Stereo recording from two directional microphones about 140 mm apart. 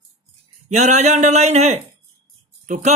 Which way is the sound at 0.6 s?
55° right (ahead or behind).